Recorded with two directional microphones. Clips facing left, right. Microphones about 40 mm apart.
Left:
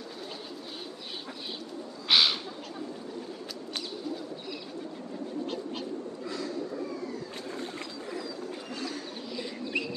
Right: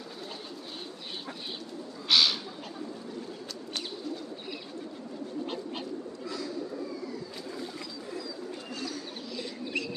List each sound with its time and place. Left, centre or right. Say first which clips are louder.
2.0 s bird: left 1 dB; centre
9.7 s bird: left 2 dB; centre